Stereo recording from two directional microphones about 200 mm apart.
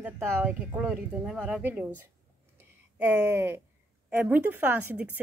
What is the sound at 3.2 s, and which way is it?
Speech, 10° right (ahead or behind).